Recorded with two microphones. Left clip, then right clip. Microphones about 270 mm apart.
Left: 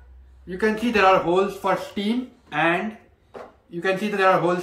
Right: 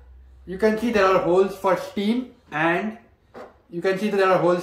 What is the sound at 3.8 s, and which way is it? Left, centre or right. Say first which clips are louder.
Speech: even; centre.